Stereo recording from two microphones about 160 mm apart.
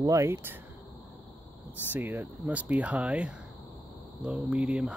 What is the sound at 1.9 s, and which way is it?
Speech, 15° right (ahead or behind).